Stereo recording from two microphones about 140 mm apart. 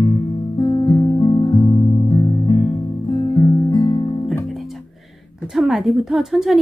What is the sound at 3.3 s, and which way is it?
Guitar, 25° left (ahead or behind).